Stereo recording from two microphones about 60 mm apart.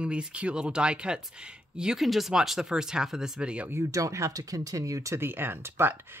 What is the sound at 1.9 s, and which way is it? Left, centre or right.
Speech, centre.